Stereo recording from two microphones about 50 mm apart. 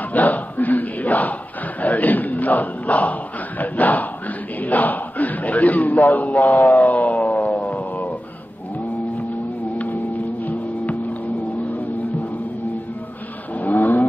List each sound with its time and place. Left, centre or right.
0.1 s speech: left
1.8 s a sound: left
9.8 s music: left
13.6 s vehicle: left